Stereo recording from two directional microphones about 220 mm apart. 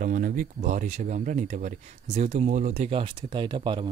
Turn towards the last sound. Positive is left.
turn(degrees=-20)  # may be behind; listen again after turning